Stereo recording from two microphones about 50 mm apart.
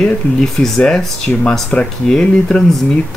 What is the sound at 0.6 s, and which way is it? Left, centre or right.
Speech, centre.